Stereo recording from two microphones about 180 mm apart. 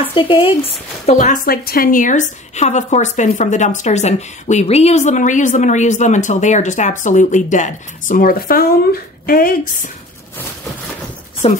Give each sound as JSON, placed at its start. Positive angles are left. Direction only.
{"t": 0.0, "sound": "speech", "side_deg": 30}
{"t": 11.4, "sound": "a woman's voice", "side_deg": 30}